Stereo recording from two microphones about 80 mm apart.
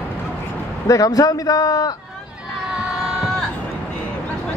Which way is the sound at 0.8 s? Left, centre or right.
Left.